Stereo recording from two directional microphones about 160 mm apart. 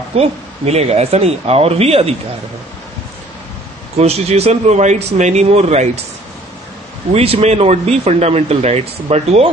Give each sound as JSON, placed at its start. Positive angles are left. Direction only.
{"t": 0.1, "sound": "speech", "side_deg": -40}
{"t": 4.0, "sound": "speech", "side_deg": -40}
{"t": 7.1, "sound": "speech", "side_deg": -40}